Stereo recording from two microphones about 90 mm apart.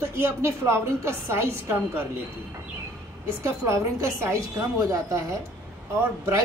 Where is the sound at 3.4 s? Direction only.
35° right (ahead or behind).